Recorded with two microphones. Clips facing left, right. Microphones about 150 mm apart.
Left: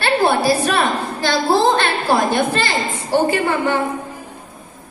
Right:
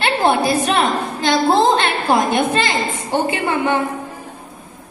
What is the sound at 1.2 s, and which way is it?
A woman's voice, 20° right (ahead or behind).